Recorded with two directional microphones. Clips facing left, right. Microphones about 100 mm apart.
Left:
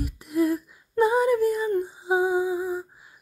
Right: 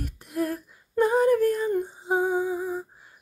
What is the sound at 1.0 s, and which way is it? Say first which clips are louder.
Lullaby: even; 5° left (ahead or behind).